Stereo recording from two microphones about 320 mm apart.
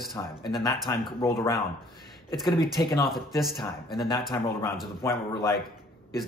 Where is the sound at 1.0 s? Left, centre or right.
Centre.